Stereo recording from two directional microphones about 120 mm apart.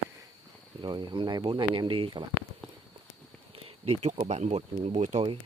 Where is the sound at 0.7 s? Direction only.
40° right (ahead or behind).